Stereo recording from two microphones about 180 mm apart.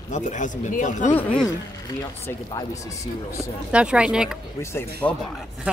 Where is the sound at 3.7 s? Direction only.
5° right (ahead or behind).